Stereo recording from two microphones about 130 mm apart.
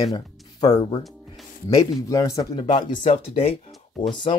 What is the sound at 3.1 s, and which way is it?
Speech, 50° left (ahead or behind).